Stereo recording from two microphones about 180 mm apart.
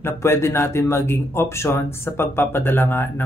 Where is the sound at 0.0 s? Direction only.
15° left (ahead or behind).